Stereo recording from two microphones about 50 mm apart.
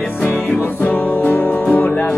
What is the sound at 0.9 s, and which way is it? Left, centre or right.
Music, left.